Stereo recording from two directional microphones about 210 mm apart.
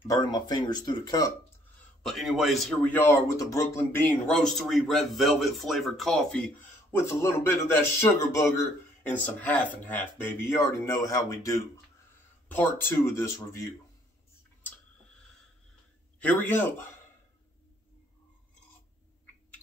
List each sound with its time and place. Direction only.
0.1 s speech: 20° left (ahead or behind)
2.0 s a man's voice: centre (ahead or behind)
16.2 s speech: 10° left (ahead or behind)